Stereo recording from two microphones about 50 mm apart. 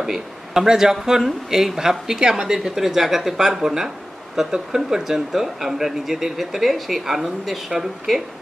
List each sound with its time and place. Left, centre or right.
0.0 s speech: centre